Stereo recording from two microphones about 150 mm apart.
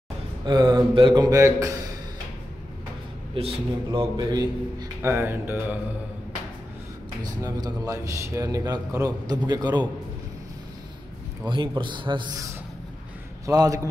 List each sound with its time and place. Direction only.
0.5 s a man's voice: 30° right (ahead or behind)
3.3 s a man's voice: 40° right (ahead or behind)
4.3 s a man's voice: 25° right (ahead or behind)
5.1 s speech: 15° right (ahead or behind)
7.4 s a man's voice: 25° right (ahead or behind)
11.4 s a man's voice: 30° right (ahead or behind)
13.5 s a man's voice: 25° right (ahead or behind)